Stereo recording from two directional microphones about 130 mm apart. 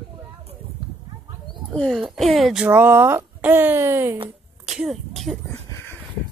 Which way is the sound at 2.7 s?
15° right (ahead or behind).